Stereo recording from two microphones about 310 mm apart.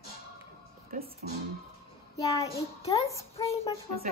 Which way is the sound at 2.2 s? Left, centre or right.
Centre.